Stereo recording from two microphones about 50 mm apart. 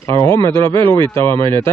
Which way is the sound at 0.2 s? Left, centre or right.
Left.